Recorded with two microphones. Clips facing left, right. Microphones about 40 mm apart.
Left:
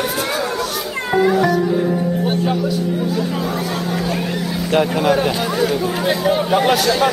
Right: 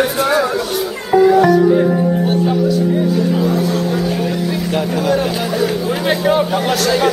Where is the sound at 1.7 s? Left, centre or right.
Right.